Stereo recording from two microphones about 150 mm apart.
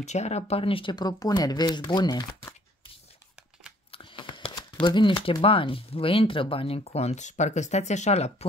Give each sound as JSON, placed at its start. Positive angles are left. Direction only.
{"t": 0.0, "sound": "speech", "side_deg": 50}
{"t": 3.9, "sound": "speech", "side_deg": 35}